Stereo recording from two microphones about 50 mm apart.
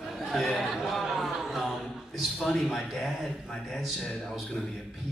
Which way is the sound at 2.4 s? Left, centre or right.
Centre.